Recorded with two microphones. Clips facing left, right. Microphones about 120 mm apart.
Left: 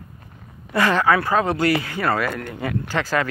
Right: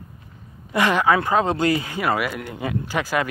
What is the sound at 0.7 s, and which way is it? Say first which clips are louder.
Speech: even; 15° right (ahead or behind).